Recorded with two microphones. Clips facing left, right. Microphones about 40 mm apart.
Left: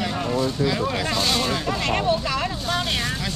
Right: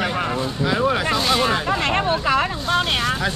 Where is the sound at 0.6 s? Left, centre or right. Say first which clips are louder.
Right 3 dB; right.